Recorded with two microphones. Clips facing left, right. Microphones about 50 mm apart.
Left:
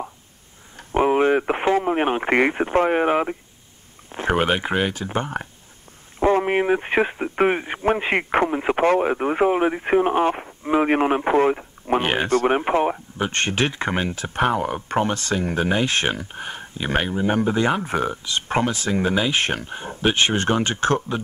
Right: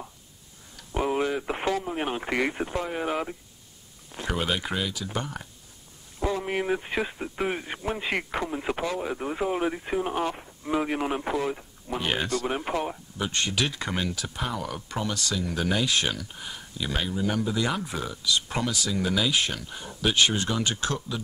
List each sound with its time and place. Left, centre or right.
0.7 s radio: left
1.9 s speech: left
8.8 s speech: left
14.3 s speech: left